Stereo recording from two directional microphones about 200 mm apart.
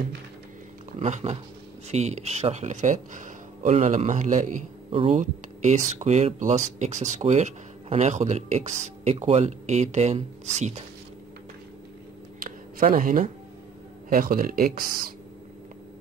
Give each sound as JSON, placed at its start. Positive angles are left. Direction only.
{"t": 0.9, "sound": "speech", "side_deg": -35}
{"t": 12.4, "sound": "a sound", "side_deg": -45}
{"t": 14.0, "sound": "speech", "side_deg": -45}